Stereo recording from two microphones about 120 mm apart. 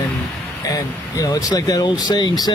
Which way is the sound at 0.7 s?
30° left (ahead or behind).